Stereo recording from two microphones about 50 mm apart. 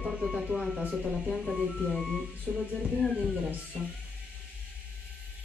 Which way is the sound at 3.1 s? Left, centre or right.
Centre.